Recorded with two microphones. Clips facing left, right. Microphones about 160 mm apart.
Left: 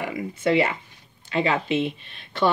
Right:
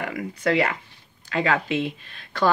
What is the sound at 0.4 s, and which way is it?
Speech, 25° left (ahead or behind).